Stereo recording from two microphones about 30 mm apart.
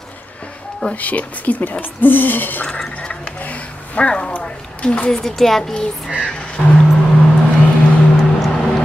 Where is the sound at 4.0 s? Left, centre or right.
Left.